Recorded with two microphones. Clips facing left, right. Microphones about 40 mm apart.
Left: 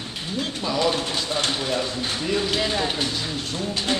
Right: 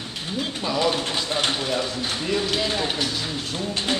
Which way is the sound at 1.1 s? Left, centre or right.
Right.